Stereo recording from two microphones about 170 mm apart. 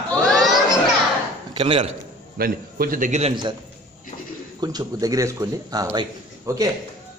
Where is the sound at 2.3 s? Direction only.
60° right (ahead or behind); by 3.3 s 40° right (ahead or behind).